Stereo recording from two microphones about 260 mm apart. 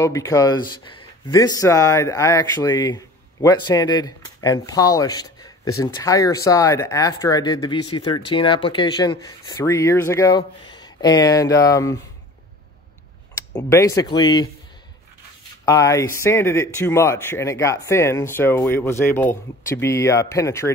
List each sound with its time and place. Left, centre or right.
0.0 s speech: centre
13.5 s speech: centre
15.6 s speech: centre